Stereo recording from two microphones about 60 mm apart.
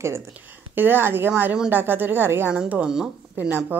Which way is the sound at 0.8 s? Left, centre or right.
Right.